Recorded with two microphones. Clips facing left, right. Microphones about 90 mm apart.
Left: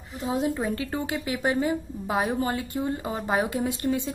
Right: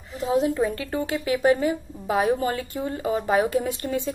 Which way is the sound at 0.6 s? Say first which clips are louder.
Right 3 dB; 25° left (ahead or behind).